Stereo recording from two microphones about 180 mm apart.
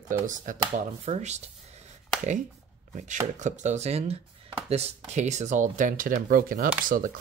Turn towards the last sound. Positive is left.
turn(degrees=-50)  # may be behind; listen again after turning